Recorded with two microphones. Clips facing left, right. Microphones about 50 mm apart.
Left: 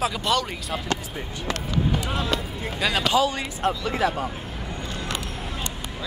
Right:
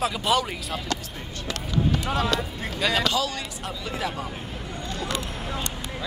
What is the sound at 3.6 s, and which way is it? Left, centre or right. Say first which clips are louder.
Speech: left 9 dB; left.